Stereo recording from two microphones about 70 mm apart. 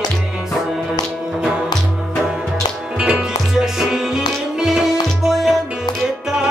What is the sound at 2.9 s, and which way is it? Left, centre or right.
Music, centre.